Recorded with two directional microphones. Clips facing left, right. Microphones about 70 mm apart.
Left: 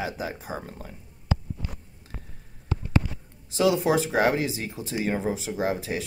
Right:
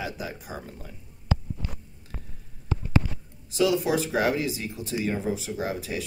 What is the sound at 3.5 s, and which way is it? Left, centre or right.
Speech, left.